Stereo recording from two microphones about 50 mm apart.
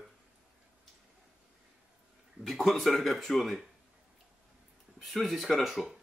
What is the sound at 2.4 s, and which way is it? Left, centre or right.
Speech, centre.